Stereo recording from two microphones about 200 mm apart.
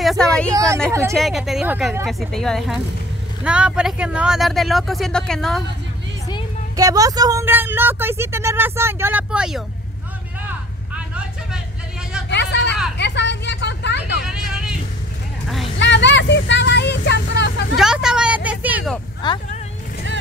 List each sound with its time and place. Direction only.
0.0 s vehicle: centre (ahead or behind)
0.5 s speech: 15° right (ahead or behind)
1.1 s speech: centre (ahead or behind)
6.8 s speech: 15° right (ahead or behind)
12.3 s vehicle: 60° left (ahead or behind)
15.4 s vehicle: centre (ahead or behind)
15.8 s vehicle: 65° left (ahead or behind)
17.7 s vehicle: 5° right (ahead or behind)
19.2 s speech: 20° left (ahead or behind)